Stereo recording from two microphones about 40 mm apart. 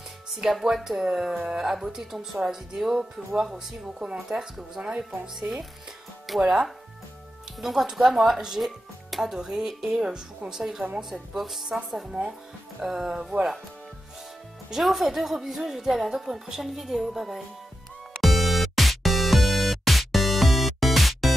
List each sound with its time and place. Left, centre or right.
0.4 s a woman's voice: centre
12.1 s speech: centre
12.8 s speech: centre
13.2 s speech: right
14.8 s a woman's voice: centre
18.2 s music: centre